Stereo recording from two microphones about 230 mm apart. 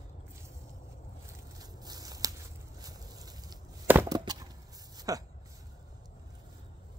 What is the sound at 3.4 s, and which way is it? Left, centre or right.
Chop, centre.